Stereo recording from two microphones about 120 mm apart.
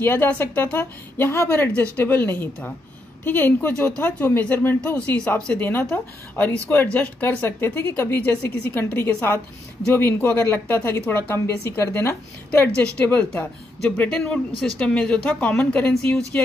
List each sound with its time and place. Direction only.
0.0 s a woman's voice: 20° left (ahead or behind)